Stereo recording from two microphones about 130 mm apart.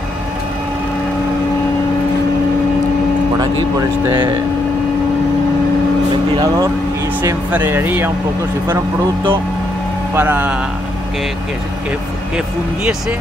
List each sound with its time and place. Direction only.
6.3 s speech: 30° right (ahead or behind)
7.5 s speech: 15° right (ahead or behind)
10.1 s speech: 15° right (ahead or behind)